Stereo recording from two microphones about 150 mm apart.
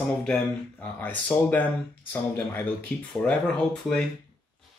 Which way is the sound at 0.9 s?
10° left (ahead or behind).